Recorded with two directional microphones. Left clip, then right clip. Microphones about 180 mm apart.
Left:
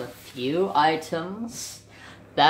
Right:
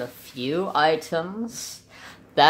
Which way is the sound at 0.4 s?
55° right (ahead or behind).